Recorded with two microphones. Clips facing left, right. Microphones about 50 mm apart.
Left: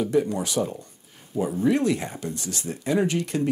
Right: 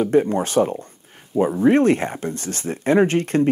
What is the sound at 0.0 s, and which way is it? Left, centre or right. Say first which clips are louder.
Speech: right 6 dB; right.